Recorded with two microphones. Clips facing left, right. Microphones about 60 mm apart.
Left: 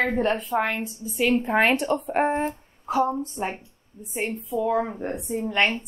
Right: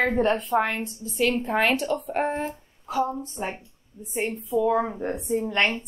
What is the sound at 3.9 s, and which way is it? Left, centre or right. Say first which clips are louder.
Speech: right 1 dB; left.